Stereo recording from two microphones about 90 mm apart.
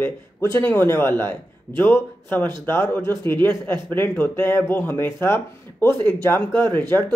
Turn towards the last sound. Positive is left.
turn(degrees=25)  # may be behind; listen again after turning